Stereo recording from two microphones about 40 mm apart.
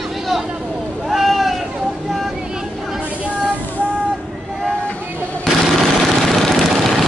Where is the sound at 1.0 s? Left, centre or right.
Centre.